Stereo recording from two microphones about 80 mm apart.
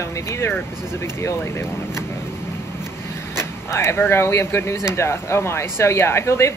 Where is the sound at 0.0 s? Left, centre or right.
Left.